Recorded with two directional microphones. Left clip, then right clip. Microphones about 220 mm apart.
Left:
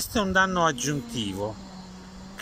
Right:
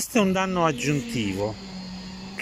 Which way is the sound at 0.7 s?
20° right (ahead or behind).